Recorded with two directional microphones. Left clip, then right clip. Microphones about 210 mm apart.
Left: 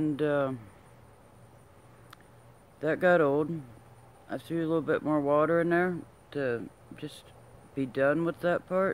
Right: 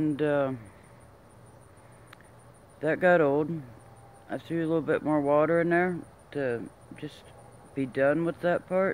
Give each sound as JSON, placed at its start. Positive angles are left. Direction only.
{"t": 0.0, "sound": "speech", "side_deg": 15}
{"t": 2.8, "sound": "speech", "side_deg": 15}